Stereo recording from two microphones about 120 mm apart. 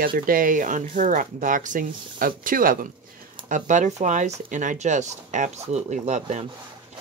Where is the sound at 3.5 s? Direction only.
90° right.